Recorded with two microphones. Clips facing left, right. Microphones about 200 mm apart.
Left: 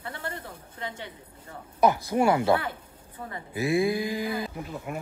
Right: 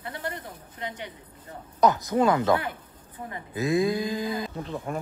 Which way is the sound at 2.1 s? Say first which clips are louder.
Right 1 dB; 15° left (ahead or behind).